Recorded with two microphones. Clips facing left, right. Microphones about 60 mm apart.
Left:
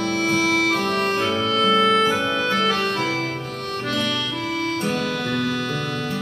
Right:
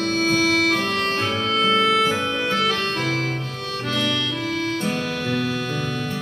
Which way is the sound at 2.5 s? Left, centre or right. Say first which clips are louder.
Left 1 dB; left.